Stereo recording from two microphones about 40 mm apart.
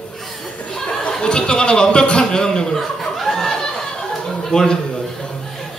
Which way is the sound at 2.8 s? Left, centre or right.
Centre.